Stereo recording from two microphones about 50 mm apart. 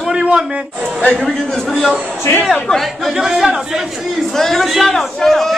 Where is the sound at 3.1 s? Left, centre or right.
Centre.